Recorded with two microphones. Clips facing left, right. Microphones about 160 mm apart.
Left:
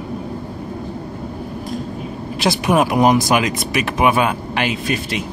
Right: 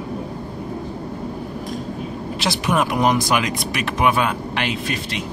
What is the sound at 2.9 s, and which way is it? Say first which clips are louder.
Speech: left 4 dB; 10° left (ahead or behind).